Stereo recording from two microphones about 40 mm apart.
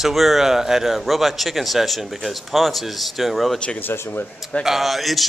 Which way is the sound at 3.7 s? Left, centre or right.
Left.